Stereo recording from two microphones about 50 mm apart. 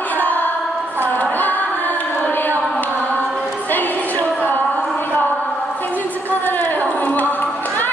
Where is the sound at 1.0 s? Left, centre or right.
Left.